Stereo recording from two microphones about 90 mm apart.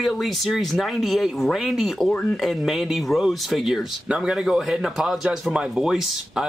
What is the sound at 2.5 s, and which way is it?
Speech, centre (ahead or behind).